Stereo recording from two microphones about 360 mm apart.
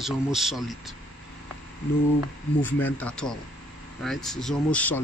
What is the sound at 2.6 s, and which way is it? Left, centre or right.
Speech, centre.